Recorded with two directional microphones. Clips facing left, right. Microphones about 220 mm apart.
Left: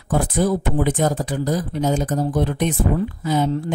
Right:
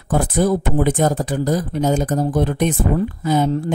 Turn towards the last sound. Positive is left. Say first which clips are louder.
# right 3 dB
turn(degrees=-45)  # may be behind; listen again after turning